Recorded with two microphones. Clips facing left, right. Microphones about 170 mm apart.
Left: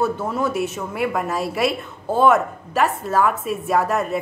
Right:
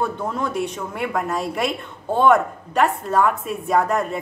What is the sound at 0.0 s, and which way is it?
A woman's voice, 5° left (ahead or behind).